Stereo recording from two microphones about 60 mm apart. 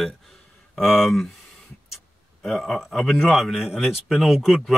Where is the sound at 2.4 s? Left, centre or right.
Centre.